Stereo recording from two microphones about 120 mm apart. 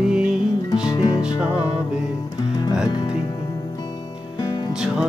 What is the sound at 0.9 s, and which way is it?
Music, 35° left (ahead or behind).